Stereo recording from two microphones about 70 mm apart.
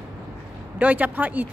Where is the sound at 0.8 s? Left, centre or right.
Right.